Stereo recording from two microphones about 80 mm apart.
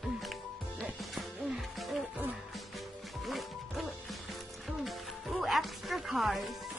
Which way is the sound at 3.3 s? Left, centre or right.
Centre.